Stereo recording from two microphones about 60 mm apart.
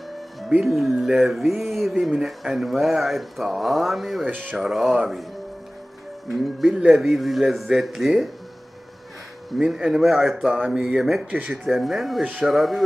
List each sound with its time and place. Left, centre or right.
0.7 s speech: centre
4.3 s speech: right
4.6 s speech: centre
6.2 s speech: centre
9.6 s a man's voice: centre
11.2 s speech: right
11.7 s speech: centre